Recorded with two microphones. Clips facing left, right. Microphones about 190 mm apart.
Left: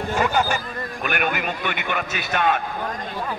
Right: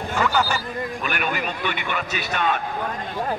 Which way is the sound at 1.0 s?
50° left (ahead or behind).